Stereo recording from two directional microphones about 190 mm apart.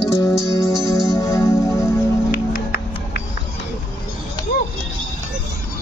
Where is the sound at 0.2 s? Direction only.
15° left (ahead or behind).